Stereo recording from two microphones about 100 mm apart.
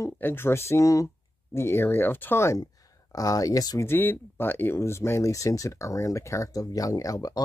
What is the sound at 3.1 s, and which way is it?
Speech, 35° left (ahead or behind).